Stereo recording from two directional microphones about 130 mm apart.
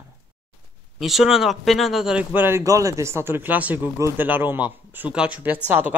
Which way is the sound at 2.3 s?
20° right (ahead or behind).